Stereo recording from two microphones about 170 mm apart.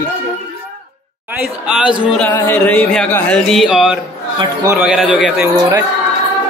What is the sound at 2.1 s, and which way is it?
Music, 10° left (ahead or behind).